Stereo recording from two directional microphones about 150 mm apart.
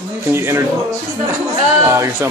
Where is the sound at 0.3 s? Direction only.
15° right (ahead or behind).